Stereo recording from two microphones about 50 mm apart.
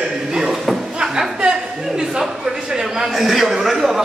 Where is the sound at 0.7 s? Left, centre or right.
Centre.